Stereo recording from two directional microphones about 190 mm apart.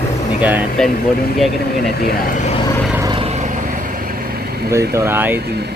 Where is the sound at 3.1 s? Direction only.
35° right (ahead or behind).